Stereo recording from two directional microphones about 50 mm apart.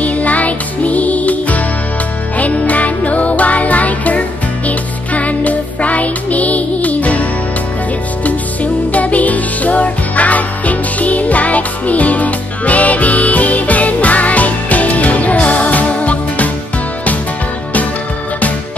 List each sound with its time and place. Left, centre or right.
0.0 s music: left
8.9 s music: left